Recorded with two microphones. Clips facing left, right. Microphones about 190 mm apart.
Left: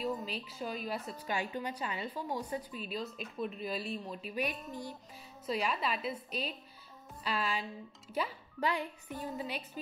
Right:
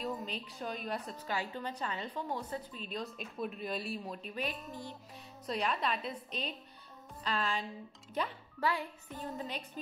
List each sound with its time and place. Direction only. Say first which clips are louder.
0.0 s a woman's voice: left 2 dB; centre (ahead or behind)
5.5 s a woman's voice: even; 5° left (ahead or behind)
7.2 s music: even; 10° left (ahead or behind)
8.1 s a child's voice: left 1 dB; 5° left (ahead or behind)
8.6 s music: even; 15° left (ahead or behind)
9.3 s a woman's voice: left 1 dB; 5° left (ahead or behind)